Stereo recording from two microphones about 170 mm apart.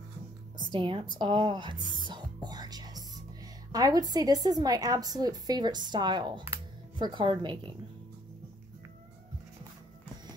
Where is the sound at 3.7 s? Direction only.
20° right (ahead or behind).